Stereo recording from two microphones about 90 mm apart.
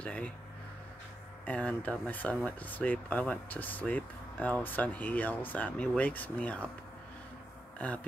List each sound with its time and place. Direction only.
0.0 s speech: 15° left (ahead or behind)
1.4 s speech: 15° left (ahead or behind)